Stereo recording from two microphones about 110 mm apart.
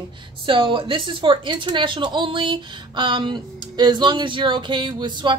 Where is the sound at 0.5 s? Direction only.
50° right (ahead or behind).